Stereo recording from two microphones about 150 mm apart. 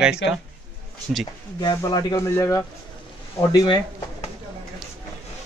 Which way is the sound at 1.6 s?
25° left (ahead or behind).